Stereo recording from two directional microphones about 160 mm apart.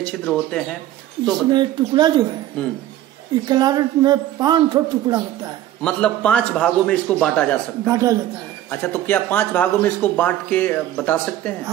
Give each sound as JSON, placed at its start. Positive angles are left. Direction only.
{"t": 0.0, "sound": "speech", "side_deg": 5}
{"t": 1.5, "sound": "a man's voice", "side_deg": -25}
{"t": 3.4, "sound": "a man's voice", "side_deg": -25}
{"t": 5.8, "sound": "speech", "side_deg": 5}
{"t": 7.9, "sound": "a man's voice", "side_deg": -20}
{"t": 8.6, "sound": "speech", "side_deg": 15}